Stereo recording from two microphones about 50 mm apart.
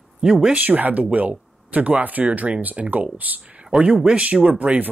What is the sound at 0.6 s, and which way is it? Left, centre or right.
Speech, right.